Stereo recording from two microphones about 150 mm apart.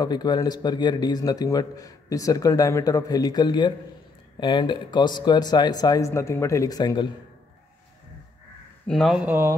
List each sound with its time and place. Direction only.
0.0 s speech: 30° left (ahead or behind)
8.8 s speech: centre (ahead or behind)